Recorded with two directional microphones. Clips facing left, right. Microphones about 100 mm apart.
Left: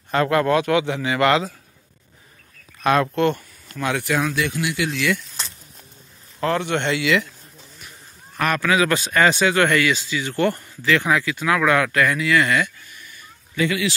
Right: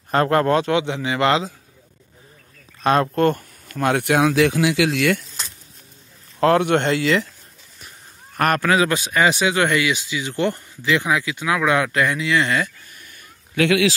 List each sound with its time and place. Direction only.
0.1 s a man's voice: 40° right (ahead or behind); by 1.5 s 25° right (ahead or behind)
2.8 s speech: 35° right (ahead or behind); by 5.0 s 90° right
6.4 s speech: 55° right (ahead or behind); by 7.2 s 35° right (ahead or behind)
8.4 s speech: 50° right (ahead or behind)
8.8 s speech: 15° right (ahead or behind)
12.9 s a sound: 50° right (ahead or behind)
13.6 s speech: 90° right